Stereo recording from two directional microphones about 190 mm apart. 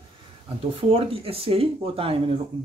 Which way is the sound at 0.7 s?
30° right (ahead or behind).